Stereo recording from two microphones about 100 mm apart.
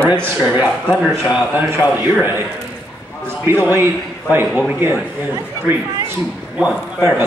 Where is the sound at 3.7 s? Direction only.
25° right (ahead or behind).